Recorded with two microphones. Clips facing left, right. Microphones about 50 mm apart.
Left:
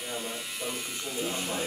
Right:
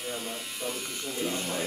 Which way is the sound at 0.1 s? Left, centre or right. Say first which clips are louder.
Even; centre.